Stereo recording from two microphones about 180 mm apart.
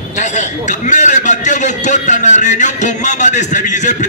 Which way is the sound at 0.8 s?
45° left (ahead or behind).